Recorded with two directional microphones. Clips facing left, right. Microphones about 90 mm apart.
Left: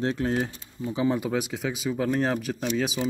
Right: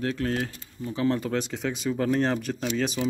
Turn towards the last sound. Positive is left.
turn(degrees=5)  # may be behind; listen again after turning